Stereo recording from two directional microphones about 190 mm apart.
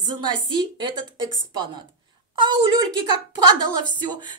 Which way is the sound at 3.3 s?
20° right (ahead or behind).